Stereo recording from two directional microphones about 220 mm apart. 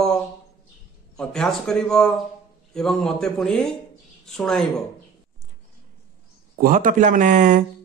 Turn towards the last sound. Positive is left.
turn(degrees=-35)  # may be behind; listen again after turning